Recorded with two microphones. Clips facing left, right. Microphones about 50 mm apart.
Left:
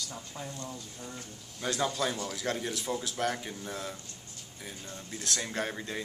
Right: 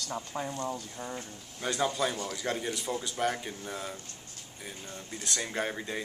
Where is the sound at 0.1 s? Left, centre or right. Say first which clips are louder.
Right 6 dB; right.